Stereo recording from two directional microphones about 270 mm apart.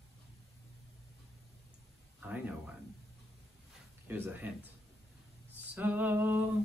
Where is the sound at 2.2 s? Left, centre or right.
Centre.